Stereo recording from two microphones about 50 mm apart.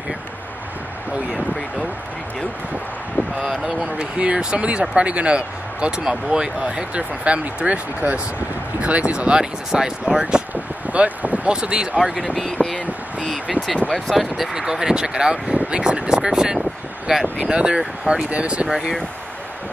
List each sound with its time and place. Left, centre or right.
3.4 s speech: centre
10.5 s a sound: right
11.5 s speech: centre
12.0 s speech: centre
12.6 s speech: left
14.1 s speech: centre; by 18.7 s right
18.7 s speech: centre